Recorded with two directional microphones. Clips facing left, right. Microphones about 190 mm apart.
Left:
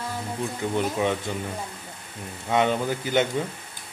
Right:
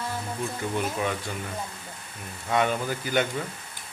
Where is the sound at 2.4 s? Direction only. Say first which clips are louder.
Left 3 dB; 20° left (ahead or behind).